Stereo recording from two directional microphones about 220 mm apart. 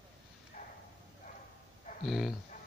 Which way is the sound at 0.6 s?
35° left (ahead or behind).